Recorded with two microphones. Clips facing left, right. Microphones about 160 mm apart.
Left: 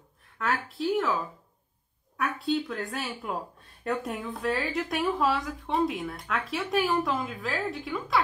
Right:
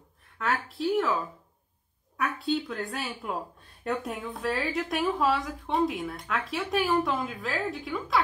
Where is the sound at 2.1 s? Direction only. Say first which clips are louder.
Even; centre (ahead or behind).